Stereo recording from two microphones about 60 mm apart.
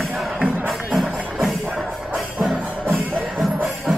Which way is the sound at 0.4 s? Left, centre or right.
Right.